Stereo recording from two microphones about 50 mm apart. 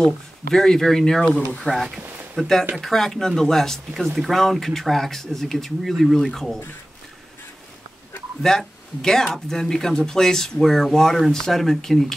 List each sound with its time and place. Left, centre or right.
0.0 s speech: centre
1.2 s speech: left
1.6 s speech: centre
2.0 s a sound: right
2.3 s speech: centre
8.4 s speech: centre